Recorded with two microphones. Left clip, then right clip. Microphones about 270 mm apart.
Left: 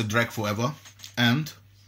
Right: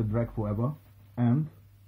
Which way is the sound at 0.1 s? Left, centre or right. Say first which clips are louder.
Left 7 dB; left.